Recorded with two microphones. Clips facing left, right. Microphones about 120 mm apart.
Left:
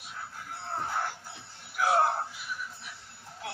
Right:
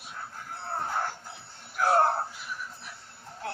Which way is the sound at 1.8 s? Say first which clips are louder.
Right 2 dB; 40° right (ahead or behind).